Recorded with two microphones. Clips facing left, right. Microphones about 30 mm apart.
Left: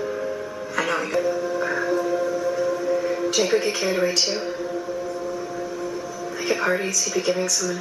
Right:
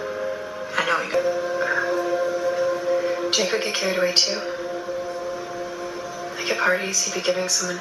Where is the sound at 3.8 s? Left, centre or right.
Centre.